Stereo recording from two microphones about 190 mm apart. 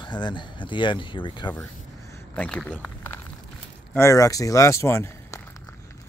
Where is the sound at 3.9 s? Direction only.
15° left (ahead or behind).